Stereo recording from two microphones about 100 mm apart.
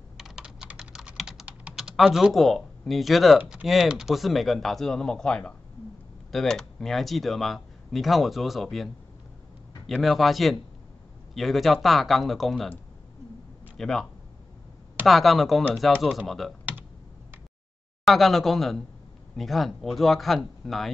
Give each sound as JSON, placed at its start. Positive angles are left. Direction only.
{"t": 0.2, "sound": "typing", "side_deg": -5}
{"t": 3.3, "sound": "speech", "side_deg": -15}
{"t": 3.6, "sound": "speech", "side_deg": -5}
{"t": 13.7, "sound": "speech", "side_deg": 5}
{"t": 15.0, "sound": "speech", "side_deg": 0}
{"t": 18.0, "sound": "speech", "side_deg": 0}